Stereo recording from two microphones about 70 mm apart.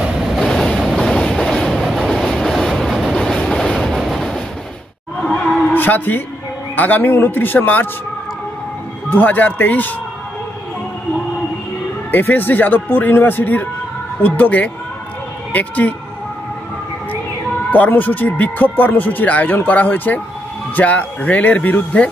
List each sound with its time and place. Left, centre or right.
0.0 s vehicle: centre
0.4 s train: centre
5.2 s music: centre
5.7 s a sound: left
6.7 s speech: left
9.1 s speech: left
12.1 s speech: left
17.6 s speech: left